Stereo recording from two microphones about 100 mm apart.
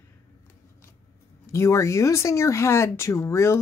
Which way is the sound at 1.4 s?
25° left (ahead or behind).